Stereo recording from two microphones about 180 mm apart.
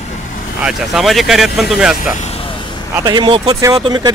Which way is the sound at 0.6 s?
Centre (ahead or behind).